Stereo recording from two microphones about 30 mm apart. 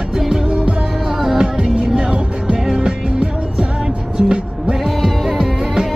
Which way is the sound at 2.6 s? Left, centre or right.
Centre.